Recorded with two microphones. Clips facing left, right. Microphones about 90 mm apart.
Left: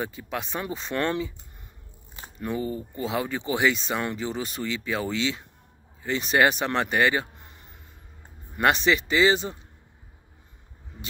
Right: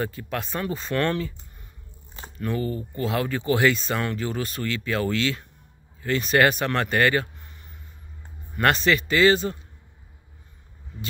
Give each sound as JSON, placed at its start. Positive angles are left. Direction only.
{"t": 0.0, "sound": "speech", "side_deg": 15}
{"t": 8.5, "sound": "speech", "side_deg": 15}